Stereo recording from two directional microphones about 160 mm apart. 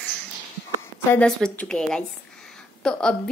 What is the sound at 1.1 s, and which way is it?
A woman's voice, 5° left (ahead or behind).